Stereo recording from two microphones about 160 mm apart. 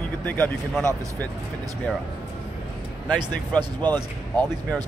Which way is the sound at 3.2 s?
25° right (ahead or behind).